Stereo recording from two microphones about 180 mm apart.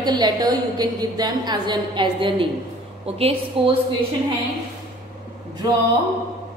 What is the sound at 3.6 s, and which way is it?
Speech, 30° right (ahead or behind).